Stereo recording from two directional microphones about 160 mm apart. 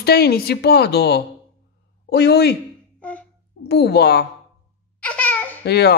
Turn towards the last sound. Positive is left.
turn(degrees=90)